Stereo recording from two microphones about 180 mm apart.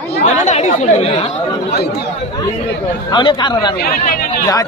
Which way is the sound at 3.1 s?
25° left (ahead or behind).